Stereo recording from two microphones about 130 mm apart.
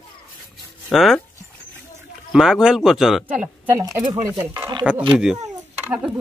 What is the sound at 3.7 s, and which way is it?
Speech, 25° right (ahead or behind).